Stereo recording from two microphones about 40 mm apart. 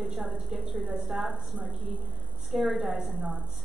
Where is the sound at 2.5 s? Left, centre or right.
Centre.